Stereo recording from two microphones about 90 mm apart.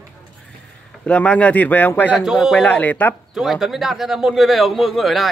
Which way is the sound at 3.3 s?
5° right (ahead or behind).